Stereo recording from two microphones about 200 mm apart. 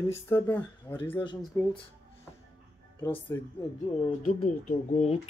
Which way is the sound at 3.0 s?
10° left (ahead or behind).